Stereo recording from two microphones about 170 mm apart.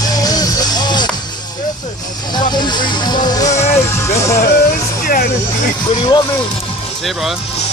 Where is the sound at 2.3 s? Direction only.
25° left (ahead or behind).